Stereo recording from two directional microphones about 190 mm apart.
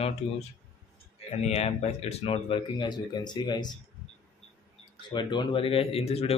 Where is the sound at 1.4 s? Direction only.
35° left (ahead or behind).